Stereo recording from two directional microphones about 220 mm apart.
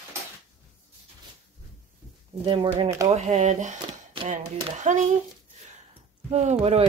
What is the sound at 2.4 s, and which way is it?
Speech, 20° right (ahead or behind).